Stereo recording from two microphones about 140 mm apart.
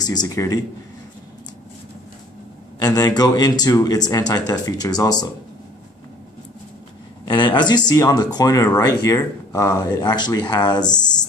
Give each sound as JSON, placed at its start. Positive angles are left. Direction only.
{"t": 0.0, "sound": "speech", "side_deg": 30}
{"t": 2.8, "sound": "speech", "side_deg": 25}
{"t": 7.2, "sound": "speech", "side_deg": 35}